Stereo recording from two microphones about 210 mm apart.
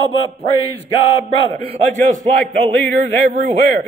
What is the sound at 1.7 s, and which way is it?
Music, 35° right (ahead or behind).